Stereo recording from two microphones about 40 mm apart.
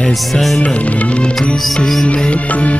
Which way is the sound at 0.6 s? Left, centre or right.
Left.